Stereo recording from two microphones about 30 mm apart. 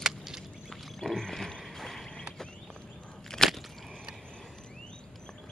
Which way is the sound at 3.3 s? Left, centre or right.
Left.